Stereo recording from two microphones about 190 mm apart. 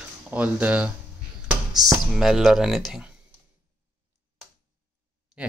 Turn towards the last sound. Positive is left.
turn(degrees=-5)  # may be behind; listen again after turning